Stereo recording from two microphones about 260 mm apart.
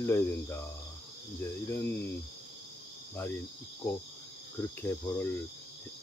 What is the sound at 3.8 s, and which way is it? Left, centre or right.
Speech, centre.